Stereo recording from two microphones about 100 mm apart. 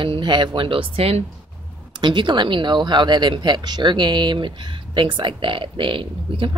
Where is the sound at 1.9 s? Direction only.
50° right (ahead or behind).